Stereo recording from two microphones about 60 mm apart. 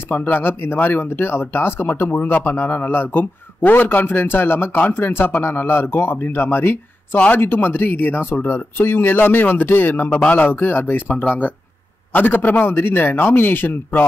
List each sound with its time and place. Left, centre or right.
0.1 s speech: left